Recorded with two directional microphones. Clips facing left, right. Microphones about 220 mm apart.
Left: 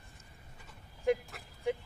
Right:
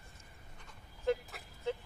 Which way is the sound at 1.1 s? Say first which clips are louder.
Left 3 dB; 15° left (ahead or behind).